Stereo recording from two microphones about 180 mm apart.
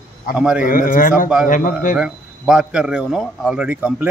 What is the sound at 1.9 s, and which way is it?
Speech, 5° right (ahead or behind).